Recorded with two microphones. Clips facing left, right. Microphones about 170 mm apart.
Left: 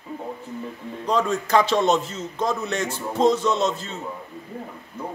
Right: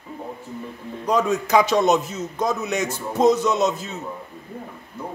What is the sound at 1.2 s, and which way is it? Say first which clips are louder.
Speech: right 1 dB; 10° right (ahead or behind).